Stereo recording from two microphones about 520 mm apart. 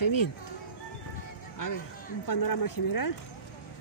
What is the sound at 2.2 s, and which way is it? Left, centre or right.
Speech, left.